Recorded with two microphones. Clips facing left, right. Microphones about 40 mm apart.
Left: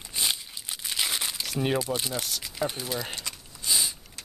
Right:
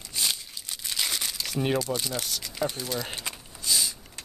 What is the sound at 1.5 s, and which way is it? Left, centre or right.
Speech, centre.